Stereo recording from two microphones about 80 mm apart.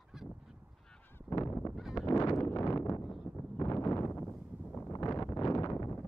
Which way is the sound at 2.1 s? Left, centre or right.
Left.